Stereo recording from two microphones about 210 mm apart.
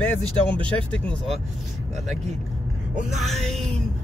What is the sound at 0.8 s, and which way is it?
Speech, 5° left (ahead or behind).